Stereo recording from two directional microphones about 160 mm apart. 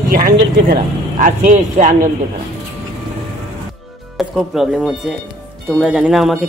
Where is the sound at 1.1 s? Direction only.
55° right (ahead or behind).